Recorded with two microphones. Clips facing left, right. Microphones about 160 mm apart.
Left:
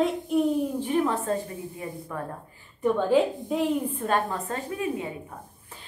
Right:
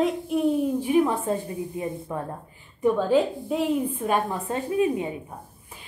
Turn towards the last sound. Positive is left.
turn(degrees=-20)  # may be behind; listen again after turning